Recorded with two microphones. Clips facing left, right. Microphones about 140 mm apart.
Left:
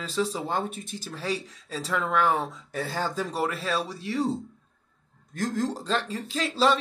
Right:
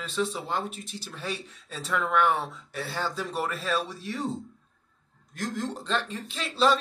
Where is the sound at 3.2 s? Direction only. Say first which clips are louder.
Left 2 dB; 30° left (ahead or behind).